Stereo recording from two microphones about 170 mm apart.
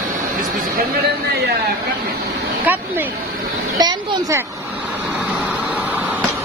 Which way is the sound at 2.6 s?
10° right (ahead or behind).